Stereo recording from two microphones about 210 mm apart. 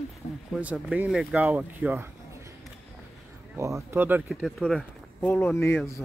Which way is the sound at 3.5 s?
15° right (ahead or behind).